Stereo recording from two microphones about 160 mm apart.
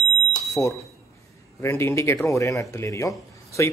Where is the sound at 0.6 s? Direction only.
5° left (ahead or behind).